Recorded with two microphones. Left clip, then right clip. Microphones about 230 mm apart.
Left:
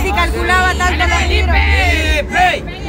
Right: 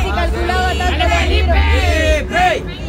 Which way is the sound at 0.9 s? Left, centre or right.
Left.